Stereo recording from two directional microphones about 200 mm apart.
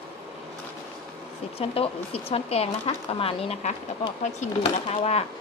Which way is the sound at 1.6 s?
30° left (ahead or behind).